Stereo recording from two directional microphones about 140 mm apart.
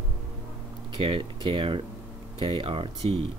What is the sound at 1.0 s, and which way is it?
Speech, 35° right (ahead or behind).